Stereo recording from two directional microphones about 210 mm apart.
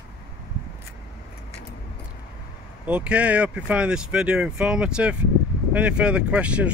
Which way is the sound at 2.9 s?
5° right (ahead or behind).